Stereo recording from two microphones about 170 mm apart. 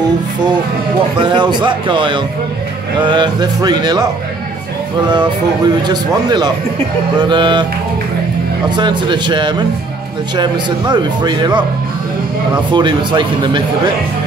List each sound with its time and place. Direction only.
1.1 s speech: 30° right (ahead or behind)
5.9 s speech: 25° right (ahead or behind)
8.6 s speech: 25° right (ahead or behind)
12.7 s speech: 25° right (ahead or behind)